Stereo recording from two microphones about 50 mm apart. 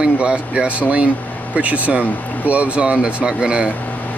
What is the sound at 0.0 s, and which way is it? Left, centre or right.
Speech, right.